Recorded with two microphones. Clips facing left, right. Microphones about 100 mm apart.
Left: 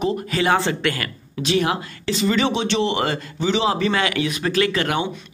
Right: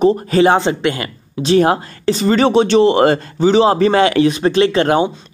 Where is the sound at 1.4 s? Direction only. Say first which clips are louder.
Right 8 dB; 40° right (ahead or behind).